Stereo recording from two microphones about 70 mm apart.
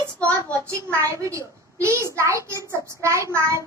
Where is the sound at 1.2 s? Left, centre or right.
Right.